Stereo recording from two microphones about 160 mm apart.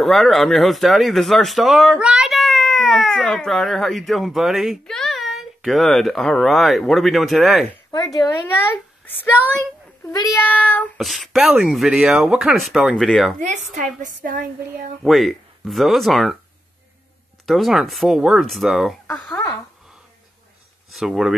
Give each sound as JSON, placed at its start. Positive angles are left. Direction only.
{"t": 0.0, "sound": "speech", "side_deg": 0}
{"t": 7.9, "sound": "speech", "side_deg": 25}
{"t": 10.1, "sound": "speech", "side_deg": 20}
{"t": 10.4, "sound": "speech", "side_deg": 10}
{"t": 14.0, "sound": "a sound", "side_deg": -60}
{"t": 15.0, "sound": "speech", "side_deg": 0}
{"t": 17.5, "sound": "speech", "side_deg": 0}
{"t": 19.0, "sound": "speech", "side_deg": 10}
{"t": 20.9, "sound": "speech", "side_deg": 0}